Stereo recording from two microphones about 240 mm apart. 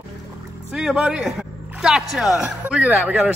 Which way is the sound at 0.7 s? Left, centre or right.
Centre.